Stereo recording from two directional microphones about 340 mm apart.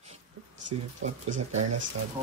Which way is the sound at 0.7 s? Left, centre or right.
Right.